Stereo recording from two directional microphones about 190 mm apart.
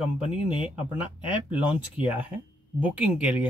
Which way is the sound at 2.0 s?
30° left (ahead or behind).